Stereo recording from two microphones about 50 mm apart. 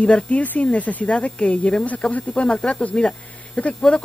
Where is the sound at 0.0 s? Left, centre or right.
Left.